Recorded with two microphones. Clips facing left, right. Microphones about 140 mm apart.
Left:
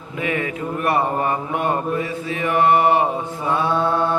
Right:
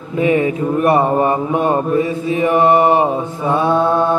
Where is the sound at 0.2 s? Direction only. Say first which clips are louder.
Right 9 dB; 25° right (ahead or behind).